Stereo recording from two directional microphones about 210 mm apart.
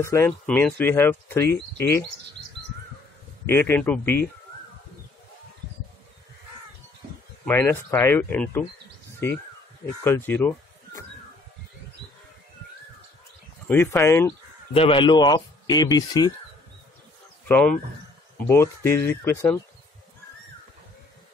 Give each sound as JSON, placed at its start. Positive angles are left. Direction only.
{"t": 0.0, "sound": "speech", "side_deg": 10}
{"t": 3.4, "sound": "speech", "side_deg": 10}
{"t": 7.4, "sound": "speech", "side_deg": 10}
{"t": 10.0, "sound": "speech", "side_deg": 10}
{"t": 13.7, "sound": "speech", "side_deg": 10}
{"t": 14.7, "sound": "speech", "side_deg": 25}
{"t": 17.5, "sound": "speech", "side_deg": 5}